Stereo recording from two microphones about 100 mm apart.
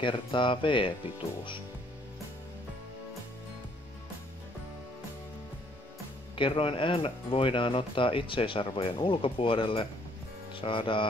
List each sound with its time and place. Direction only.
0.0 s speech: 55° left (ahead or behind)
6.3 s speech: 60° left (ahead or behind)